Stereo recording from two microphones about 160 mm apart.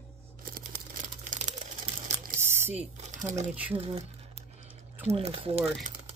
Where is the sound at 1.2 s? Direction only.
50° right (ahead or behind).